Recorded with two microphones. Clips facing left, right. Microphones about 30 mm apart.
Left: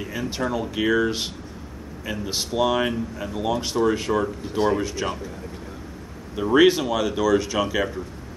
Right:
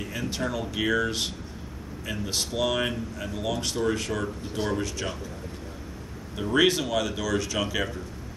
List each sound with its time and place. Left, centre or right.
0.0 s speech: centre
6.3 s speech: centre